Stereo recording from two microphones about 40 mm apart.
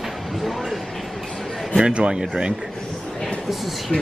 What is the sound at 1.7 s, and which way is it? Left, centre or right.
Speech, right.